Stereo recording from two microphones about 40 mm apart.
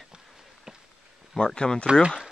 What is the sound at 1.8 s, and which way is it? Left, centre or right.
Speech, right.